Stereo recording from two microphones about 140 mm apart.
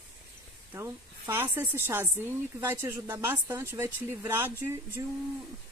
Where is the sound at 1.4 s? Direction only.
15° right (ahead or behind).